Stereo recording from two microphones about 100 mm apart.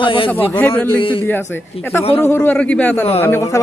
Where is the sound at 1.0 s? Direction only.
60° left (ahead or behind).